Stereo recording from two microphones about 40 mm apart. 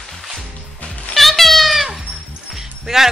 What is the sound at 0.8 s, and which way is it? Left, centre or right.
Music, left.